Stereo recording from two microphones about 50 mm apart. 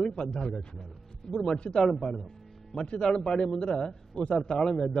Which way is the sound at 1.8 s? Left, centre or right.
Centre.